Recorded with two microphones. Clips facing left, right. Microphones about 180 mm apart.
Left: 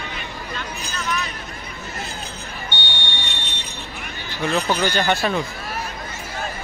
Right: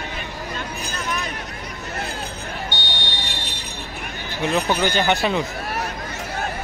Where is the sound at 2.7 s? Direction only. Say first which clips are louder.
Right 1 dB; 40° right (ahead or behind).